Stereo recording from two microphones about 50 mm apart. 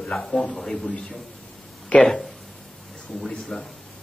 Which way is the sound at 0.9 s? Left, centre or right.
Left.